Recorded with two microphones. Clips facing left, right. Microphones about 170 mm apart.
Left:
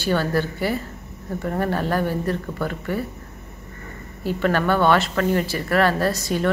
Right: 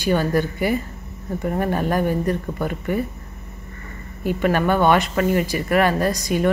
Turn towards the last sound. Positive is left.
turn(degrees=-15)  # may be behind; listen again after turning